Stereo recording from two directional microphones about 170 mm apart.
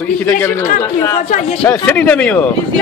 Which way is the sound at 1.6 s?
10° left (ahead or behind).